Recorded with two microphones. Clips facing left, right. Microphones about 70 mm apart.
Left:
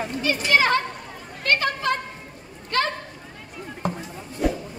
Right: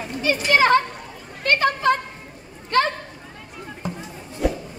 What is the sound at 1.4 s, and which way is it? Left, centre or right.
Chatter, right.